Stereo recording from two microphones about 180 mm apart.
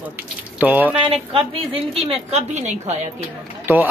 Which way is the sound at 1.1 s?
30° right (ahead or behind).